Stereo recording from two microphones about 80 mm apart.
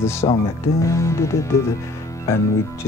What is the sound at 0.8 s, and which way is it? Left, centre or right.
Speech, left.